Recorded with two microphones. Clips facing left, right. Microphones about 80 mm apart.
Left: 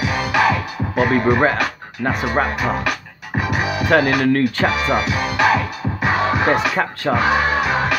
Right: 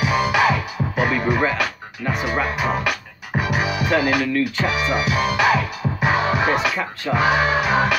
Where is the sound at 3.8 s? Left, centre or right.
Left.